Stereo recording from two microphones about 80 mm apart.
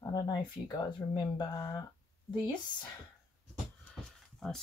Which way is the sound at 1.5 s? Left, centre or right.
Left.